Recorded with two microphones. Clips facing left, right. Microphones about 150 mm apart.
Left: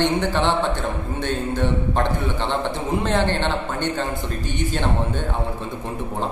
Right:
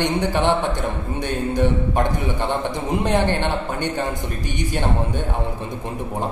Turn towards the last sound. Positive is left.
turn(degrees=-15)  # may be behind; listen again after turning